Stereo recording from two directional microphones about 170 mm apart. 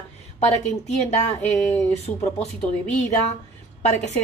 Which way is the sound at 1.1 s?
40° left (ahead or behind).